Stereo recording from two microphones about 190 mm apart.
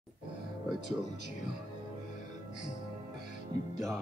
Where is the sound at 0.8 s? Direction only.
55° right (ahead or behind).